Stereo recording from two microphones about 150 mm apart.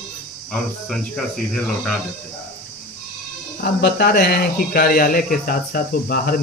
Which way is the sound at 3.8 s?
90° left.